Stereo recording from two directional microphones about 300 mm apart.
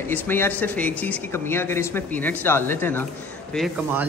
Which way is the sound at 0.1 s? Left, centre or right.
Centre.